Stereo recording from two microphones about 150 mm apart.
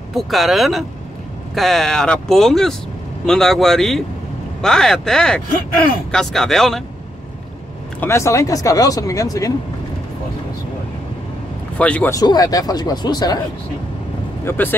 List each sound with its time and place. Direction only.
0.1 s speech: centre (ahead or behind)
8.0 s speech: 20° left (ahead or behind)
11.8 s speech: 10° left (ahead or behind)
12.1 s speech: 25° left (ahead or behind)
14.4 s speech: 15° left (ahead or behind)